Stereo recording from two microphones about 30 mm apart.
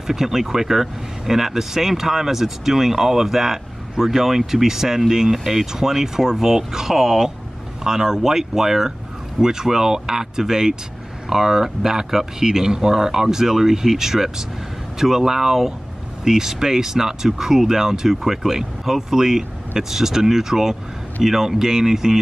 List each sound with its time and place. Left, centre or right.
0.0 s speech: centre